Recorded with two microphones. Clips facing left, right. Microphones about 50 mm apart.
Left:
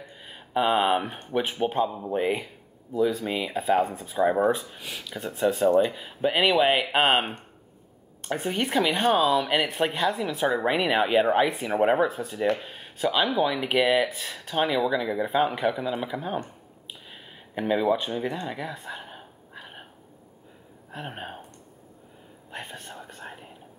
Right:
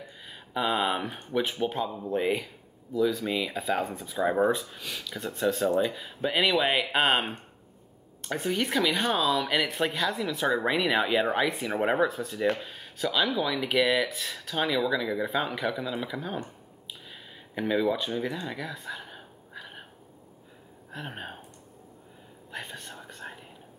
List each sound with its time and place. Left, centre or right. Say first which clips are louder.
0.2 s speech: left 5 dB; left
2.9 s a woman's voice: left 1 dB; left; by 12.1 s centre
12.1 s speech: left 2 dB; left
17.1 s a sound: left 4 dB; centre
20.9 s speech: left 2 dB; centre
22.5 s speech: left 1 dB; centre
22.9 s whispering: left 1 dB; centre